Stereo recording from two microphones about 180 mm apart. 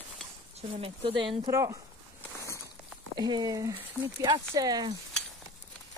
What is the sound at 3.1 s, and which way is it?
Speech, 20° right (ahead or behind).